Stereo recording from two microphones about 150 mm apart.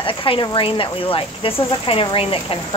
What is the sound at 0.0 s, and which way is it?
Speech, 35° left (ahead or behind).